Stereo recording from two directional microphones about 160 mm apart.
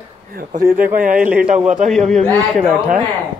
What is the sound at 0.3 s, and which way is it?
Speech, 70° right (ahead or behind).